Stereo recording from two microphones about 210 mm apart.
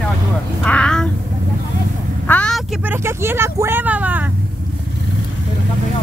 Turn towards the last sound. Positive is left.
turn(degrees=-5)  # may be behind; listen again after turning